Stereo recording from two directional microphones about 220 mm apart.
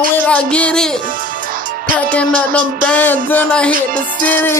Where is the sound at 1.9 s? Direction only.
5° left (ahead or behind).